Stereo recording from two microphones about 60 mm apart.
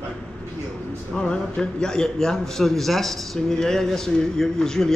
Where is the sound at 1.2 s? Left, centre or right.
Centre.